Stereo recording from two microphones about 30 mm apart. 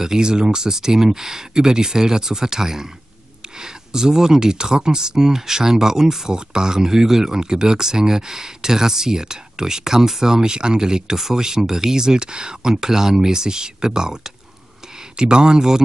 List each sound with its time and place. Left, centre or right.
0.0 s speech: right
12.8 s speech: centre